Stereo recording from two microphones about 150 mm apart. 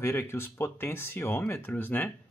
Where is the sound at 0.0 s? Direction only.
15° left (ahead or behind).